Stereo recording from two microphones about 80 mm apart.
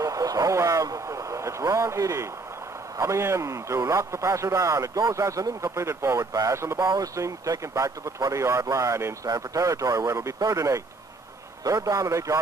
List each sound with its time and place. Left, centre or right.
0.0 s speech: right